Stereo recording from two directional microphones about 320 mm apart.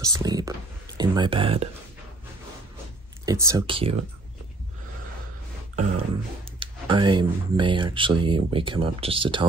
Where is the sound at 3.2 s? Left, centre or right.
Centre.